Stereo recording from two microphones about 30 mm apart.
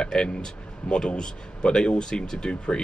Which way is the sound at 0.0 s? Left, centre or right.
Left.